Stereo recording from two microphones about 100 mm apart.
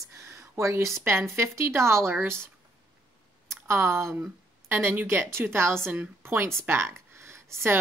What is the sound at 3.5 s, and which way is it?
Speech, 25° right (ahead or behind).